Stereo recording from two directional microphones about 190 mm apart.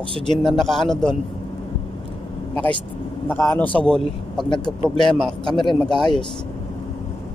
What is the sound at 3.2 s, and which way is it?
A man's voice, 10° left (ahead or behind).